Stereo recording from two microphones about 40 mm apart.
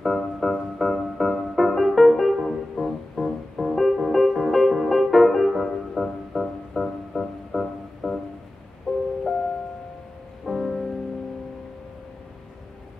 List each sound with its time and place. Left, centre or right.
0.0 s music: centre
10.4 s music: centre